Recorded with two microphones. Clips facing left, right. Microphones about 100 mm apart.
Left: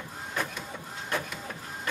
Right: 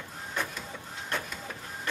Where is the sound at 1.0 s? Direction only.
5° left (ahead or behind).